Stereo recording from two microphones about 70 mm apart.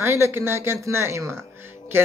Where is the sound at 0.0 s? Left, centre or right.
Right.